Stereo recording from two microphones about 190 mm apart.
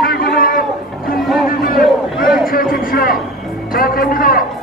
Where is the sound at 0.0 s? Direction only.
50° left (ahead or behind).